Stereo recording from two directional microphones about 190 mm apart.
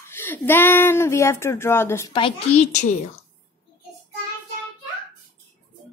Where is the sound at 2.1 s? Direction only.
30° left (ahead or behind).